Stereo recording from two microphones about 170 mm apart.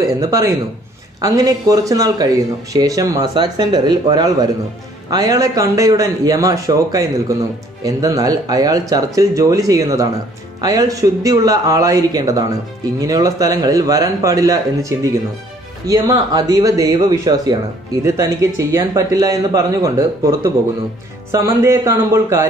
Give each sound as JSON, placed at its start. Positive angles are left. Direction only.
{"t": 0.2, "sound": "speech", "side_deg": -20}